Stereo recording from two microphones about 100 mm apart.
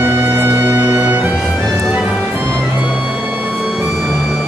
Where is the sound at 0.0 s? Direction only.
25° right (ahead or behind).